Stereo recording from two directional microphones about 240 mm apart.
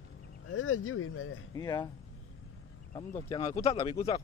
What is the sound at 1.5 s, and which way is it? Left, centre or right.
Speech, centre.